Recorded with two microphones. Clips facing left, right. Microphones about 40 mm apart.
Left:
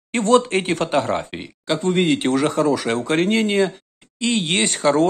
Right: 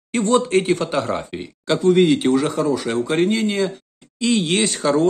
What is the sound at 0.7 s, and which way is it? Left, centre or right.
Speech, left.